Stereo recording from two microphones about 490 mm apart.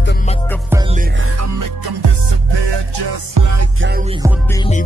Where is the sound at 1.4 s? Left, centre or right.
Right.